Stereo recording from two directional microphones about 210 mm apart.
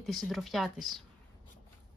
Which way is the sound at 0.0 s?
Centre (ahead or behind).